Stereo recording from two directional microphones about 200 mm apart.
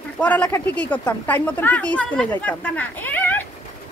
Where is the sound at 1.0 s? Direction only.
10° left (ahead or behind).